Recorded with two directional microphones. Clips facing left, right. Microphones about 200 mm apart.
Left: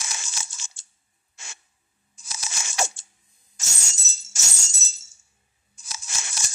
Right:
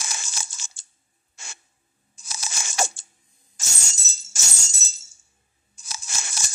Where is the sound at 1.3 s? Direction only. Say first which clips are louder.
Right 1 dB; 35° right (ahead or behind).